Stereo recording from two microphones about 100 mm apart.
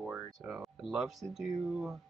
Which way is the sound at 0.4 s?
Centre (ahead or behind).